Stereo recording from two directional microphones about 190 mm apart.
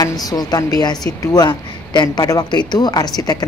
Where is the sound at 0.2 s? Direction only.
20° left (ahead or behind).